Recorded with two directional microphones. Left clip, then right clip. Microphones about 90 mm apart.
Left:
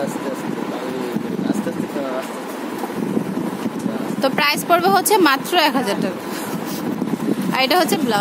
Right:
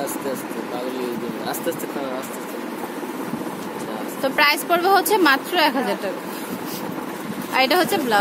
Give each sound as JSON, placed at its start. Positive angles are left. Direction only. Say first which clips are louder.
{"t": 4.2, "sound": "a woman's voice", "louder": "even", "side_deg": 35}
{"t": 7.5, "sound": "speech", "louder": "even", "side_deg": 35}